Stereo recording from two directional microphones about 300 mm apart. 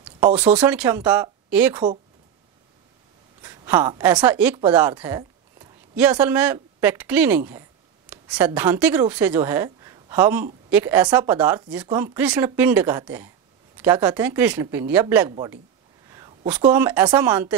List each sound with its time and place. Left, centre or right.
0.0 s speech: centre
3.4 s a woman's voice: centre